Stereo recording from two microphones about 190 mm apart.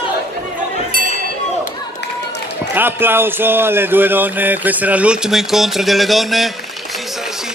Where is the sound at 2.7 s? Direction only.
10° right (ahead or behind).